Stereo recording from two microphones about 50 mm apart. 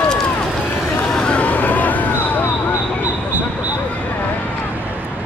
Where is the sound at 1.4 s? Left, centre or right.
Left.